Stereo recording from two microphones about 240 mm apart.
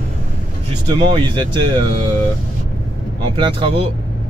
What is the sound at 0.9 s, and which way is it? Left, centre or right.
Speech, centre.